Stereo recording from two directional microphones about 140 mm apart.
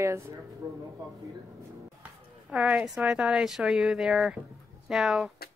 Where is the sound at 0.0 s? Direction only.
20° right (ahead or behind).